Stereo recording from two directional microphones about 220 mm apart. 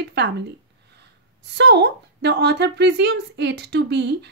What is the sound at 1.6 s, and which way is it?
A woman's voice, 50° right (ahead or behind).